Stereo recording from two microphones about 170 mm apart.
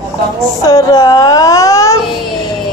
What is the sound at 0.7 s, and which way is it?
Speech, 20° left (ahead or behind).